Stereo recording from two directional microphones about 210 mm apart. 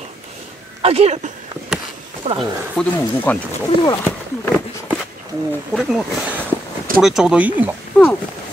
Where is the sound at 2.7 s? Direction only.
5° left (ahead or behind).